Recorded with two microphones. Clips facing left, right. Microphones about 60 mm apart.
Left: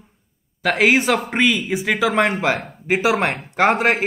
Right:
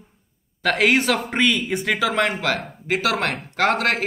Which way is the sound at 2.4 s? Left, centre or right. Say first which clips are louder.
Left 3 dB; centre.